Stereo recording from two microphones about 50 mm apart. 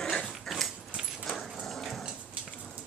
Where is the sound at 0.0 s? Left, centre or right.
Centre.